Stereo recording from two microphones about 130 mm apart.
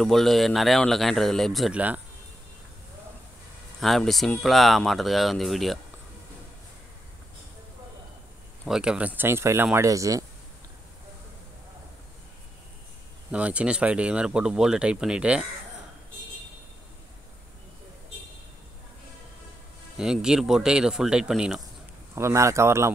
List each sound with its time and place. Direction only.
0.0 s speech: centre (ahead or behind)
3.8 s speech: centre (ahead or behind)
8.6 s speech: 5° right (ahead or behind); by 10.2 s 25° right (ahead or behind)
13.3 s speech: 10° right (ahead or behind)
20.0 s speech: 5° right (ahead or behind)
22.1 s speech: 20° right (ahead or behind)